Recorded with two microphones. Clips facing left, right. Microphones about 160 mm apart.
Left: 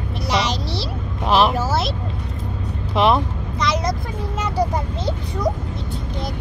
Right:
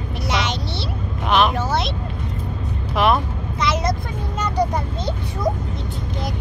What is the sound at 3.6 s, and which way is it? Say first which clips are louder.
Vehicle: even; centre (ahead or behind).